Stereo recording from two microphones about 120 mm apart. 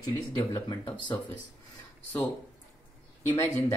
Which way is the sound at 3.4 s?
25° left (ahead or behind).